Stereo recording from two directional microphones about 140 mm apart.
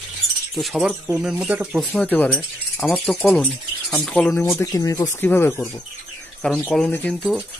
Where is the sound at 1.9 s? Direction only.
10° left (ahead or behind).